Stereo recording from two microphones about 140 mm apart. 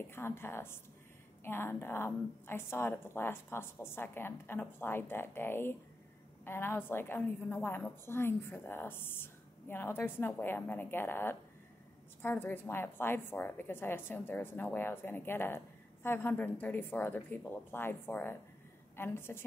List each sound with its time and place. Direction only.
0.1 s a woman's voice: 15° left (ahead or behind)